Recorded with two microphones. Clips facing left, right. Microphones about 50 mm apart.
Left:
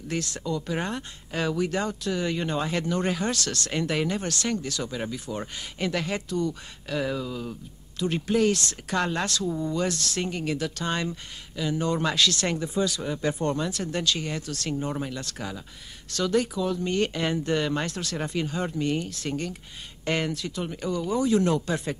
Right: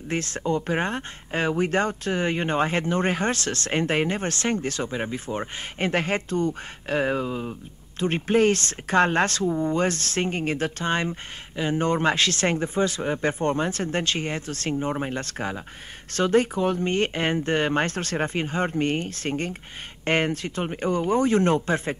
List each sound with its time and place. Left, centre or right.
0.1 s speech: right